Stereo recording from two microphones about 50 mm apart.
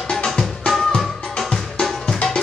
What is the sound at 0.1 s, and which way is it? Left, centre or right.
Music, centre.